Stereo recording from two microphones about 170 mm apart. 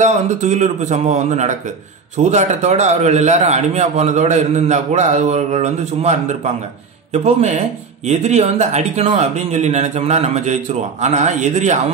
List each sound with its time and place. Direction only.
0.0 s a man's voice: 45° right (ahead or behind)